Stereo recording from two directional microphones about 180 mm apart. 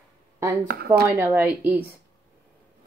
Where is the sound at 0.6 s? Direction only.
60° right (ahead or behind).